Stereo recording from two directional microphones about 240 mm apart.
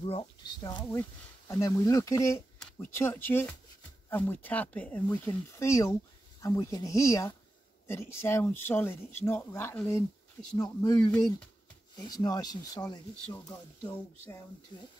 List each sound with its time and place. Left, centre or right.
0.0 s speech: left
14.7 s speech: centre